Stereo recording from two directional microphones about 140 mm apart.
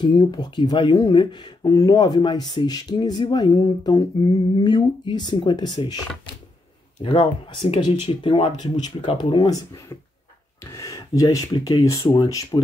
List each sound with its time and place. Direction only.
0.0 s speech: 30° left (ahead or behind)